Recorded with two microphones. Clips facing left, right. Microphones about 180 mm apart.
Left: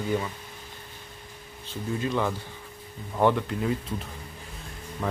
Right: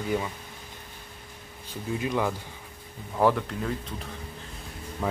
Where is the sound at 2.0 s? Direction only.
10° right (ahead or behind).